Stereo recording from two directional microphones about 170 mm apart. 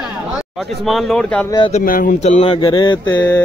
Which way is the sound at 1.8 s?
55° left (ahead or behind).